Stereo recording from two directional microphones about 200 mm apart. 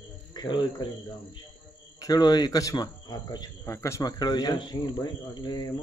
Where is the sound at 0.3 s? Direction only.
20° left (ahead or behind).